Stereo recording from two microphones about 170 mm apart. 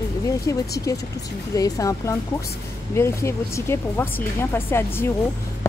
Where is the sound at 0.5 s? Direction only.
20° left (ahead or behind).